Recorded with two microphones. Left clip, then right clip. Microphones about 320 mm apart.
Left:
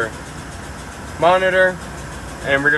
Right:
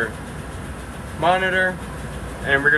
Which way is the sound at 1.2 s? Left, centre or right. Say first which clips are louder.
Left 5 dB; left.